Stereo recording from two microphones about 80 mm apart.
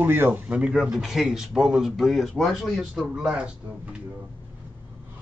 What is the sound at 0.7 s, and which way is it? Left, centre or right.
Speech, centre.